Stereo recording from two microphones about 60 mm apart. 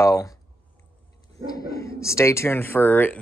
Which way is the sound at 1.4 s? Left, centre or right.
Left.